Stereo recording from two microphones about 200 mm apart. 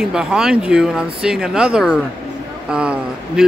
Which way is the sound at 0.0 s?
5° right (ahead or behind).